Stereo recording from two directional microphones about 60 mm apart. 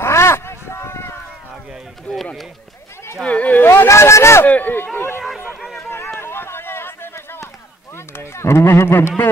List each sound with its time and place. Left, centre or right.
0.0 s a sound: left
2.1 s run: left
3.3 s speech: left
3.5 s speech: left
4.5 s speech: left
5.9 s a sound: left
8.2 s speech: left